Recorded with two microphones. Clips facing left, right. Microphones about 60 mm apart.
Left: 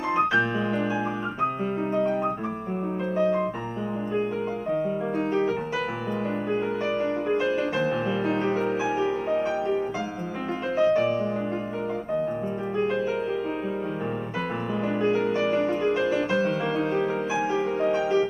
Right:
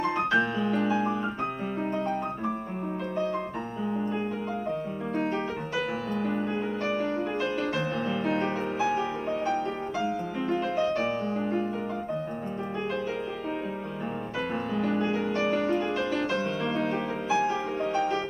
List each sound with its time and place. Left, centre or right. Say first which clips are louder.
0.1 s music: left 3 dB; centre
6.9 s music: left 3 dB; centre
7.4 s music: left 4 dB; centre
10.8 s music: left 10 dB; centre
15.0 s music: left 4 dB; centre